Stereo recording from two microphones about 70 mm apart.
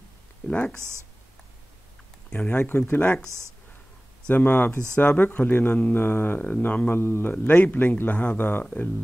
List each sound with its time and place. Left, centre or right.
0.5 s speech: centre
0.7 s speech: right
2.3 s speech: left
3.3 s speech: right
4.3 s speech: left